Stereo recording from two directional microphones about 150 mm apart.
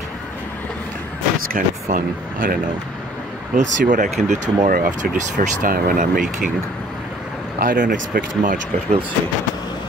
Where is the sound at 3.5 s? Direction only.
60° right (ahead or behind).